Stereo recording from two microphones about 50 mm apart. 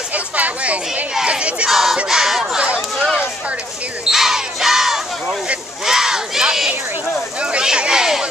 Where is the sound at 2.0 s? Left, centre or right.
Centre.